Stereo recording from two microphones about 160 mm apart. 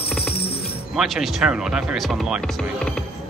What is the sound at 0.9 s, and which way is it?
Speech, centre (ahead or behind).